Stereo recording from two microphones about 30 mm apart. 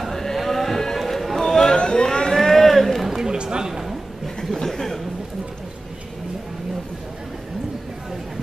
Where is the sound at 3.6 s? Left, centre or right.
Centre.